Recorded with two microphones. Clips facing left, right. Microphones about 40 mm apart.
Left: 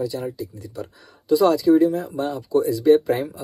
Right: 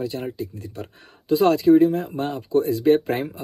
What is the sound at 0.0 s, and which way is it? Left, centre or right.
Speech, right.